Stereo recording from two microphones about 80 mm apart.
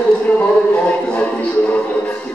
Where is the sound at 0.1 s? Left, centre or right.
Centre.